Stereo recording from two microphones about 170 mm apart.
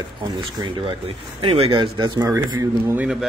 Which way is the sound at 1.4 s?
35° right (ahead or behind).